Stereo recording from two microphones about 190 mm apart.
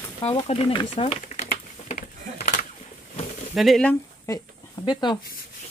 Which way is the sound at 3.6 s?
Centre (ahead or behind).